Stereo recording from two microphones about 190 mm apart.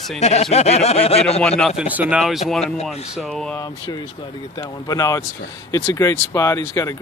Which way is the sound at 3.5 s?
20° left (ahead or behind).